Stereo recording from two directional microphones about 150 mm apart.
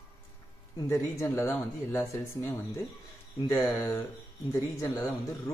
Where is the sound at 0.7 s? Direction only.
20° left (ahead or behind).